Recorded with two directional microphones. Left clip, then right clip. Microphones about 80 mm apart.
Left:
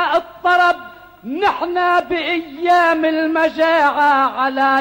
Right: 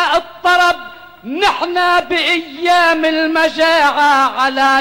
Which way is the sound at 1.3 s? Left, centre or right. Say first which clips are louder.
Right 3 dB; left.